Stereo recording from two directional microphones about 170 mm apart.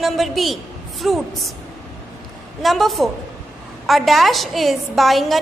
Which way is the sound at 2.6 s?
Centre (ahead or behind).